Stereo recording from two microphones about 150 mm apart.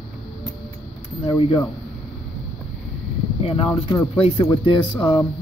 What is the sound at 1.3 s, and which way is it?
Speech, 35° left (ahead or behind).